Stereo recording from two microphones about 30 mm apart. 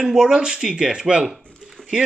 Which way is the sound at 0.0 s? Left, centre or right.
Right.